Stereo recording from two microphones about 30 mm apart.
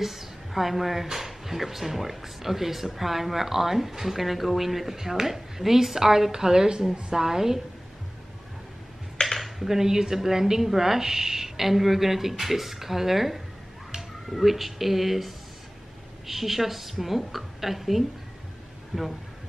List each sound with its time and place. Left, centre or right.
0.0 s speech: centre
9.2 s finger snapping: left
9.7 s a woman's voice: centre